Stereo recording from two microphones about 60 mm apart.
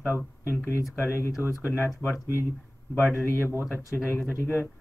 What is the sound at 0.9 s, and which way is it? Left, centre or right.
Speech, left.